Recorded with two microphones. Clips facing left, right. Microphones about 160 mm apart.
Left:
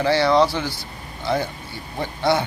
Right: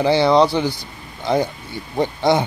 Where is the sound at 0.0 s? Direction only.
15° right (ahead or behind).